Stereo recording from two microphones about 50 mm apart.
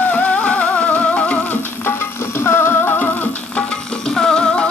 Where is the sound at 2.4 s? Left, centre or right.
Left.